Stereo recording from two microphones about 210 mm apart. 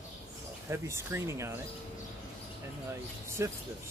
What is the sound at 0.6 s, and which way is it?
Speech, 10° right (ahead or behind).